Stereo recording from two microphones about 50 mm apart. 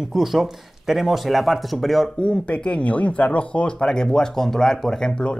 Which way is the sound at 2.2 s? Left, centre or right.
Left.